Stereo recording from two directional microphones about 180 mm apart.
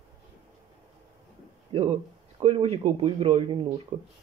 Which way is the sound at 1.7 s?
35° right (ahead or behind).